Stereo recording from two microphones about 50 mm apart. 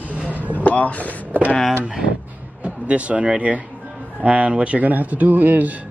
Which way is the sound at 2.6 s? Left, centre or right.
Right.